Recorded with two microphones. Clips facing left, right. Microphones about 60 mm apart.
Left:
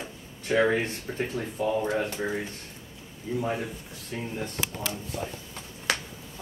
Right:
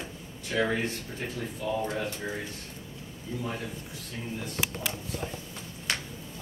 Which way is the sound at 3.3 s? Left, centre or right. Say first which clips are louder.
Left 6 dB; left.